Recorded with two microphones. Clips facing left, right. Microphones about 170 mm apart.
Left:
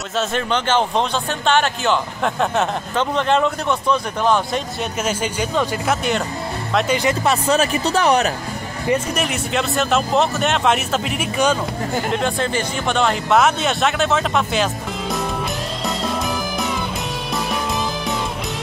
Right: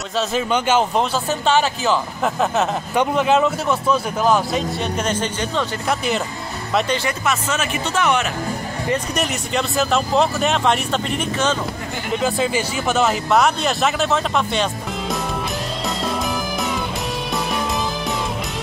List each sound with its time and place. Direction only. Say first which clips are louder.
0.3 s a man's voice: right 2 dB; 10° right (ahead or behind)
5.0 s speech: even; 10° left (ahead or behind)
7.2 s speech: left 5 dB; 35° left (ahead or behind)
9.1 s a man's voice: left 1 dB; centre (ahead or behind)
12.1 s a man's voice: right 4 dB; 5° right (ahead or behind)